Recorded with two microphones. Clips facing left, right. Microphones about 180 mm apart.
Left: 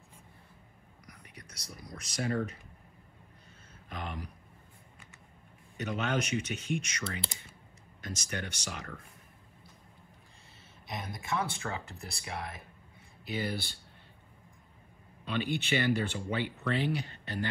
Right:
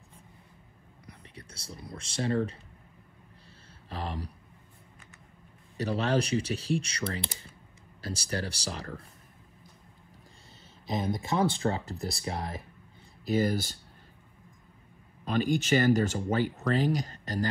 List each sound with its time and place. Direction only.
1.0 s whispering: 30° right (ahead or behind)
2.0 s speech: 30° right (ahead or behind)
3.9 s a sound: 35° right (ahead or behind)
5.8 s speech: 35° right (ahead or behind)
11.0 s speech: 30° right (ahead or behind)
15.2 s speech: 40° right (ahead or behind)